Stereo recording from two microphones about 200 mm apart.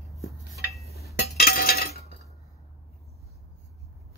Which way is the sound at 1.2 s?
50° left (ahead or behind).